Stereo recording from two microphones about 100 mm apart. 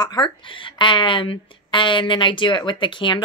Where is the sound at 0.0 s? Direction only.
45° left (ahead or behind).